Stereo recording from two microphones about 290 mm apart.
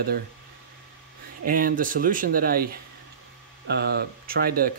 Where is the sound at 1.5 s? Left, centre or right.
Right.